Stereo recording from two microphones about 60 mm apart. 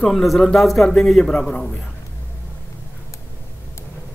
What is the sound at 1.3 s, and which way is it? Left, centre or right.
Speech, centre.